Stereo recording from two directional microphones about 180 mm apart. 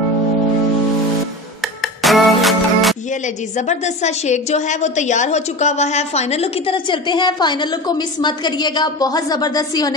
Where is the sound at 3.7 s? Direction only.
40° left (ahead or behind); by 9.9 s 20° left (ahead or behind).